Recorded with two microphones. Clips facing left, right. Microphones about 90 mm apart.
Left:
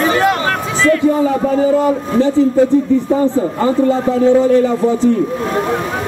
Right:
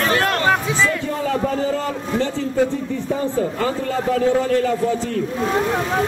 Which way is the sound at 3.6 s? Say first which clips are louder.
Left 8 dB; 20° left (ahead or behind).